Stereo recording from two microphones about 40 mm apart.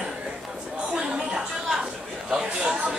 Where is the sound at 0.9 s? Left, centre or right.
Centre.